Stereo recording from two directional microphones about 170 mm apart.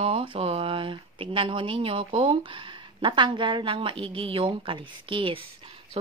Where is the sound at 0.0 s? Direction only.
30° right (ahead or behind).